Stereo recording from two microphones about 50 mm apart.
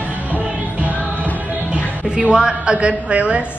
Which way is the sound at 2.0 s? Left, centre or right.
Right.